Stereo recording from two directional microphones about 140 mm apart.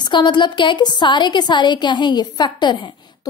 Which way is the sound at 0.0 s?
35° left (ahead or behind).